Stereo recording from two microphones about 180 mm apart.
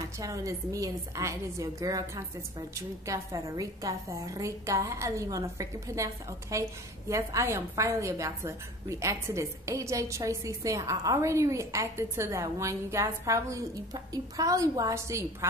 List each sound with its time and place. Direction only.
0.2 s a woman's voice: 20° right (ahead or behind)